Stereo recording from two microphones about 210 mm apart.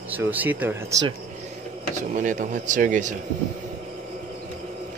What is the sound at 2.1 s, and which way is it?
A man's voice, 40° right (ahead or behind).